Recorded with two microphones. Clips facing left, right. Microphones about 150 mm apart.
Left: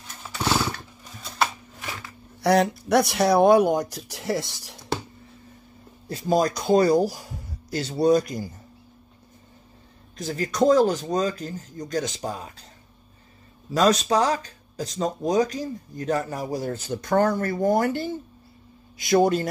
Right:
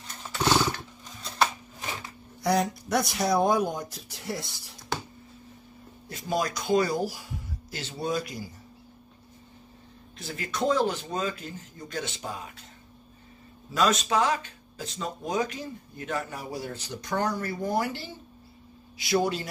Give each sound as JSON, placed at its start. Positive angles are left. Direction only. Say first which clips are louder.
{"t": 0.1, "sound": "chainsaw", "louder": "even", "side_deg": 5}
{"t": 2.4, "sound": "speech", "louder": "left 6 dB", "side_deg": 70}
{"t": 6.0, "sound": "speech", "louder": "left 7 dB", "side_deg": 35}
{"t": 10.1, "sound": "speech", "louder": "left 8 dB", "side_deg": 40}
{"t": 13.7, "sound": "a man's voice", "louder": "left 4 dB", "side_deg": 35}